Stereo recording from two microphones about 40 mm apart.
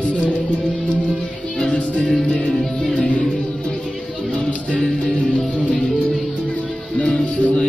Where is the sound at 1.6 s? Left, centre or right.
Left.